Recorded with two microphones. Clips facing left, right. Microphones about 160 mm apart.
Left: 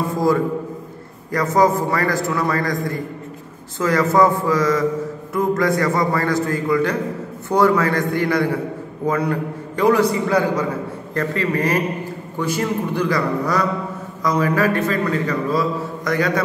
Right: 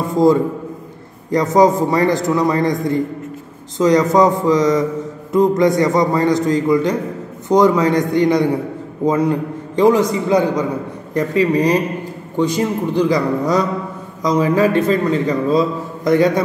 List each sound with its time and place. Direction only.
0.1 s a man's voice: 20° right (ahead or behind)